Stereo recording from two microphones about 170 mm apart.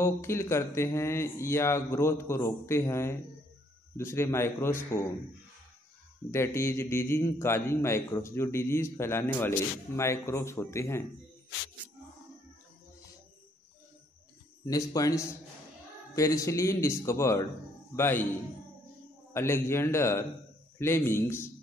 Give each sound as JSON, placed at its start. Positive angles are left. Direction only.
{"t": 0.0, "sound": "a man's voice", "side_deg": 15}
{"t": 6.3, "sound": "a man's voice", "side_deg": 15}
{"t": 14.7, "sound": "a man's voice", "side_deg": 20}
{"t": 19.3, "sound": "a man's voice", "side_deg": 15}